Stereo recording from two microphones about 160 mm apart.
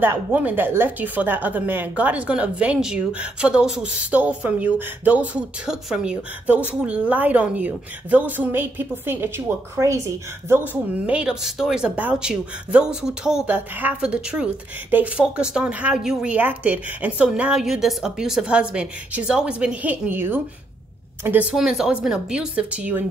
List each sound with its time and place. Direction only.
0.0 s a woman's voice: 10° right (ahead or behind)
10.7 s speech: 10° right (ahead or behind)